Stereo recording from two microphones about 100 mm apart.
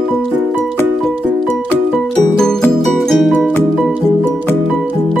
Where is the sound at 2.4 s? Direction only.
5° left (ahead or behind).